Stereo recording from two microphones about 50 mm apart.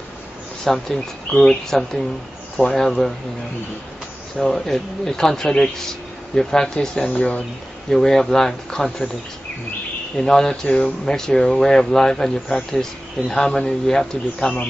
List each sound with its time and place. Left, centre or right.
0.7 s speech: centre
4.4 s speech: centre
7.2 s speech: left
7.9 s speech: centre
10.1 s speech: centre